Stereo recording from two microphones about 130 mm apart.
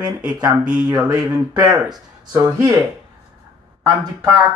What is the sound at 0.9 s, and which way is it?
Speech, 30° right (ahead or behind).